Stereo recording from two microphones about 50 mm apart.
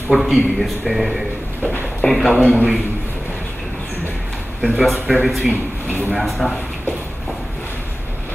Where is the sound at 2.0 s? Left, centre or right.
Centre.